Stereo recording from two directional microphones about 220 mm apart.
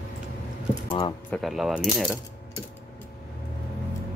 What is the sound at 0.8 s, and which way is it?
Typing, 20° left (ahead or behind).